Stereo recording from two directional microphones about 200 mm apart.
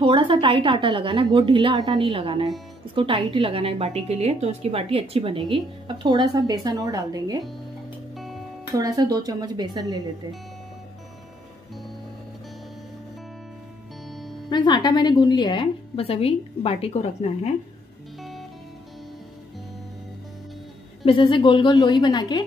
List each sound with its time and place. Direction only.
0.0 s a woman's voice: 25° right (ahead or behind)
8.7 s a woman's voice: 20° right (ahead or behind)
14.5 s a woman's voice: 20° left (ahead or behind)
21.0 s a woman's voice: 25° left (ahead or behind)